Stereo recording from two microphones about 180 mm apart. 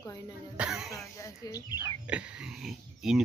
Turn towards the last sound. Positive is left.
turn(degrees=0)  # may be behind; listen again after turning